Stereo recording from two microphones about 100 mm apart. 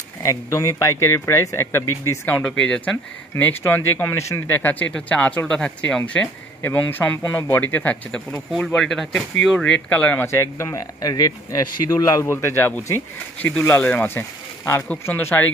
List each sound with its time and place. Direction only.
0.2 s speech: 30° left (ahead or behind); by 8.2 s 15° left (ahead or behind)
8.3 s speech: 5° left (ahead or behind)
10.2 s speech: 25° left (ahead or behind)